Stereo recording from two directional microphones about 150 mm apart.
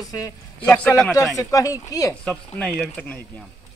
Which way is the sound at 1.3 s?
25° left (ahead or behind).